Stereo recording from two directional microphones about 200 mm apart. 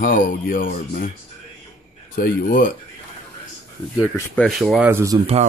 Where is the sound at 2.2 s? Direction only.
45° left (ahead or behind).